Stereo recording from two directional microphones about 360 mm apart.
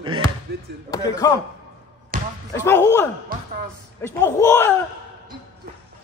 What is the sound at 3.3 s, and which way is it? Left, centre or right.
Speech, right.